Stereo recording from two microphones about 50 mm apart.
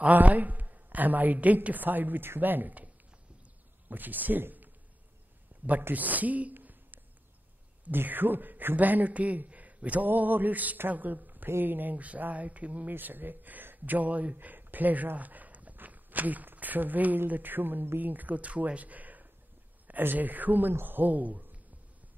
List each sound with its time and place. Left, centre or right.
0.0 s a man's voice: right
3.9 s a man's voice: right
5.7 s a man's voice: right
6.5 s a sound: right
7.9 s a man's voice: right
12.9 s a man's voice: right